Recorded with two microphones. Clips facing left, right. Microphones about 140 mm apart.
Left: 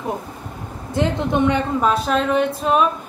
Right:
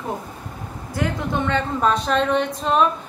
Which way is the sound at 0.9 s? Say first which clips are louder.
Left 5 dB; 20° left (ahead or behind).